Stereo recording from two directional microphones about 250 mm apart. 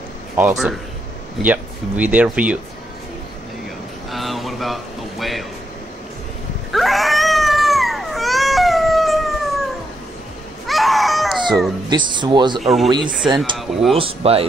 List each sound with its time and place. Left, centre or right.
0.4 s speech: centre
4.1 s a sound: centre
5.2 s speech: centre
6.7 s cat: centre
10.7 s crying: centre
11.9 s speech: centre
12.5 s speech: centre
13.9 s speech: right